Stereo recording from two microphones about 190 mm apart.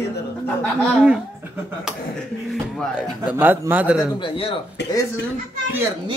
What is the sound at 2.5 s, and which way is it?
Speech, 5° right (ahead or behind).